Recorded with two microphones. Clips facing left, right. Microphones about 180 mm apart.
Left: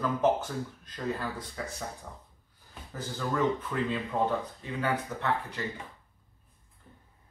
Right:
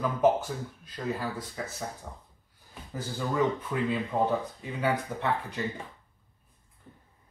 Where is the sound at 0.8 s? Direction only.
10° right (ahead or behind).